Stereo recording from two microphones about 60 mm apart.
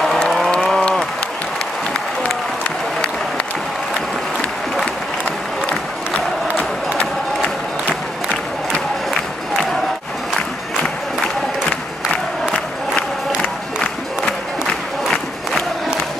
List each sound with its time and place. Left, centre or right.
0.5 s applause: centre
7.0 s crowd: left